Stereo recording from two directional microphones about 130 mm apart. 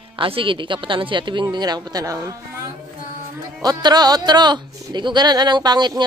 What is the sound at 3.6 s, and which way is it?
Speech, 30° right (ahead or behind).